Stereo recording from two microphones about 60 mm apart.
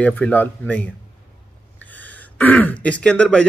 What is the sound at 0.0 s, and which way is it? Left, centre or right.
Speech, left.